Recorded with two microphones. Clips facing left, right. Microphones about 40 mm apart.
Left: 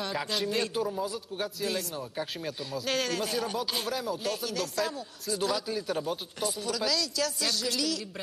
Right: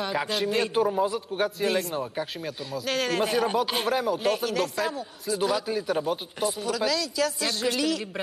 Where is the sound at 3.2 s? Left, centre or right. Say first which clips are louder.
Right 7 dB; right.